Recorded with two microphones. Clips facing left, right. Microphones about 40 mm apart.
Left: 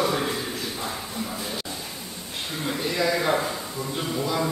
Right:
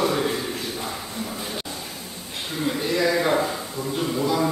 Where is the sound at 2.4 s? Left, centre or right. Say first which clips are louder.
Right 3 dB; centre.